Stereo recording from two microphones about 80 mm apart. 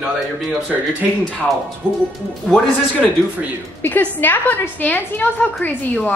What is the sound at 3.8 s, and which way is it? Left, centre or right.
A woman's voice, left.